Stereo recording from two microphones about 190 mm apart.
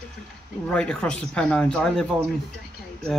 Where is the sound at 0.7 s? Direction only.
5° left (ahead or behind).